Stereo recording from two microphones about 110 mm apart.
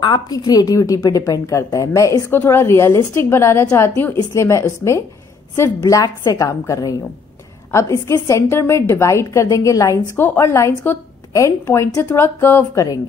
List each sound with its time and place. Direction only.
0.0 s a woman's voice: 40° left (ahead or behind); by 12.8 s 20° left (ahead or behind)